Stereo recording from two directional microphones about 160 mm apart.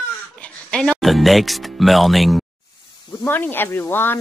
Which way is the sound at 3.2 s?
10° left (ahead or behind).